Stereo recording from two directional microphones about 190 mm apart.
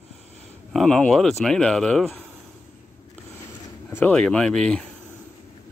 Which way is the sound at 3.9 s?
10° left (ahead or behind).